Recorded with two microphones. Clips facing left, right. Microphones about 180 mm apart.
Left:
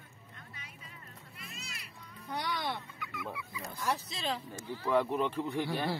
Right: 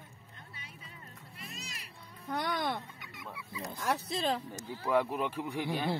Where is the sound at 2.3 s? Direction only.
50° right (ahead or behind).